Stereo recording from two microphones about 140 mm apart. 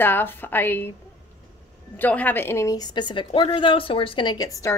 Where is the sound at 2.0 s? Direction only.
10° left (ahead or behind).